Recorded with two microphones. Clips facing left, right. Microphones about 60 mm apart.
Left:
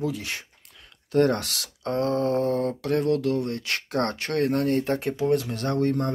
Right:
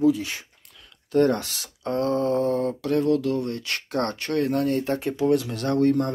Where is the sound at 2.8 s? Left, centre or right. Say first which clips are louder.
Right 3 dB; left.